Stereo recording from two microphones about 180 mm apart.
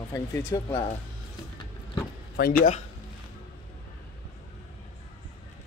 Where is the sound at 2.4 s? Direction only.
60° left (ahead or behind).